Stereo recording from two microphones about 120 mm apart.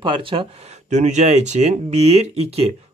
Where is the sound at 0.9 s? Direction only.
70° right (ahead or behind).